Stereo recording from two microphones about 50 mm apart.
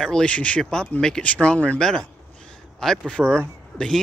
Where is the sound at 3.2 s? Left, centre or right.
Right.